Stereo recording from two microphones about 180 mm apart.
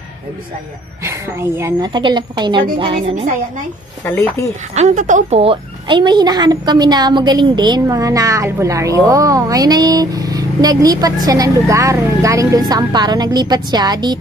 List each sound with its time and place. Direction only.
1.0 s a woman's voice: 15° right (ahead or behind)
4.0 s speech: 15° left (ahead or behind)
4.7 s a woman's voice: 40° right (ahead or behind); by 14.1 s 25° right (ahead or behind)